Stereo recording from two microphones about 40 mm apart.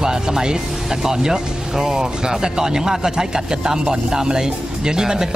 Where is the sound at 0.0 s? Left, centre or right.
Centre.